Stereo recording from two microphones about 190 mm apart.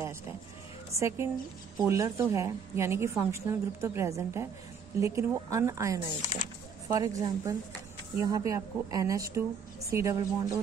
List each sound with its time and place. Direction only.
0.9 s a woman's voice: 15° right (ahead or behind)